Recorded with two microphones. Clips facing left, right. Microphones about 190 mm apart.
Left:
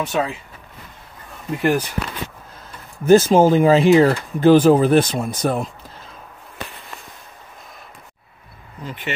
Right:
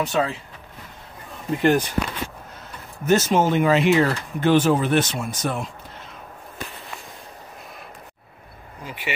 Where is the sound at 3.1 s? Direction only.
30° left (ahead or behind).